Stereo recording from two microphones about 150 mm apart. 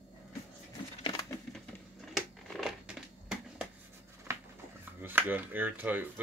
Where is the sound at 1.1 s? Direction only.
20° left (ahead or behind).